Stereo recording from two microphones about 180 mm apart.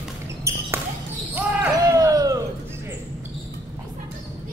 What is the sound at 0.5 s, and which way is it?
Basketball bounce, 15° right (ahead or behind).